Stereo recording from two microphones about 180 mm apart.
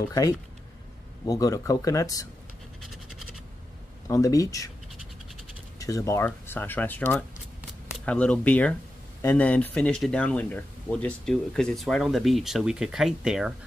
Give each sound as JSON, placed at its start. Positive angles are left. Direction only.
{"t": 1.2, "sound": "speech", "side_deg": 20}
{"t": 2.8, "sound": "scratch", "side_deg": 0}
{"t": 4.1, "sound": "speech", "side_deg": 20}
{"t": 5.8, "sound": "speech", "side_deg": 20}